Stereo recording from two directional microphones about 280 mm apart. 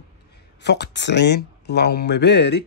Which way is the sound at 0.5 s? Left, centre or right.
Left.